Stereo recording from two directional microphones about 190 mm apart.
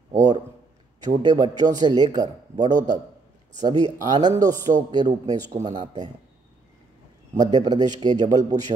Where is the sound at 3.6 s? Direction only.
20° right (ahead or behind).